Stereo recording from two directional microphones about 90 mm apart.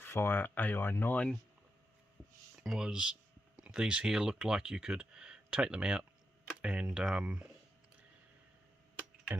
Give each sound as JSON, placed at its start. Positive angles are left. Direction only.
{"t": 0.0, "sound": "speech", "side_deg": 25}
{"t": 2.6, "sound": "speech", "side_deg": -5}